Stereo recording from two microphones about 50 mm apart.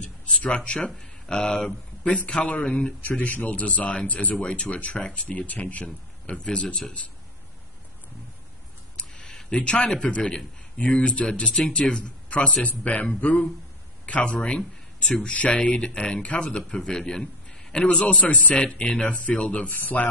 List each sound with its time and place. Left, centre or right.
0.3 s speech: centre
5.9 s a man's voice: centre
8.9 s a sound: left
9.3 s a sound: centre
9.6 s a man's voice: centre
19.7 s speech: left